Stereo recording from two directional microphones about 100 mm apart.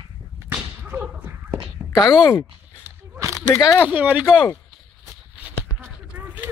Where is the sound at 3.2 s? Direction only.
30° right (ahead or behind).